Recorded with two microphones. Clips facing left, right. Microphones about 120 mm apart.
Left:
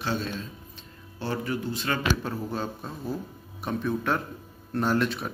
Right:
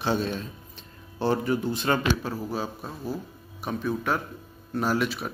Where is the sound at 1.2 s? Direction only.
25° right (ahead or behind).